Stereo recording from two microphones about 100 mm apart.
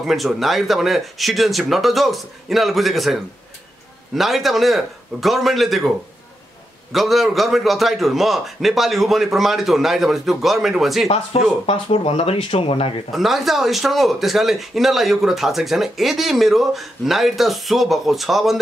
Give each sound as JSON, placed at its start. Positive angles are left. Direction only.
{"t": 0.0, "sound": "speech", "side_deg": 0}
{"t": 6.9, "sound": "speech", "side_deg": 0}
{"t": 11.6, "sound": "speech", "side_deg": 80}
{"t": 13.1, "sound": "speech", "side_deg": 0}